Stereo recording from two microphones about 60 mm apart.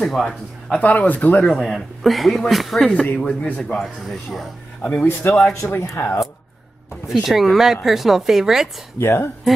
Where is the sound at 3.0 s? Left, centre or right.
Left.